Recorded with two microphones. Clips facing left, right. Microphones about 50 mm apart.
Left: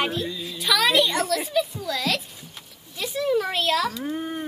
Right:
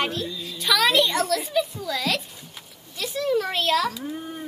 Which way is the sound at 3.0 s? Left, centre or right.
Centre.